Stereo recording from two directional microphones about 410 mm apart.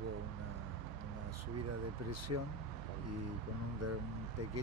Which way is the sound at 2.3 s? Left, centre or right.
Right.